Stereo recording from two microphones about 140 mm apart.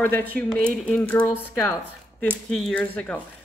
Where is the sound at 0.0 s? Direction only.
10° left (ahead or behind).